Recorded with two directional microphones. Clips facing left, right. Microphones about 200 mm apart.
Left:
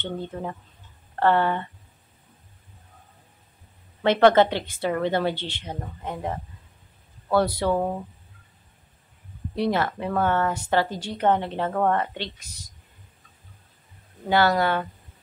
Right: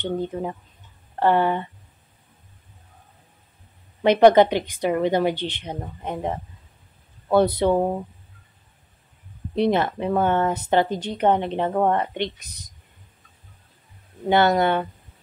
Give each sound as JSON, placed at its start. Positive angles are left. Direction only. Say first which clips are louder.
{"t": 0.0, "sound": "a woman's voice", "louder": "right 5 dB", "side_deg": -15}
{"t": 4.0, "sound": "a woman's voice", "louder": "right 3 dB", "side_deg": -15}
{"t": 9.6, "sound": "speech", "louder": "right 4 dB", "side_deg": -20}
{"t": 14.3, "sound": "speech", "louder": "right 3 dB", "side_deg": -20}